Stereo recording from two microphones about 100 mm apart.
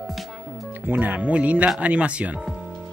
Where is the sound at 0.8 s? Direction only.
15° right (ahead or behind).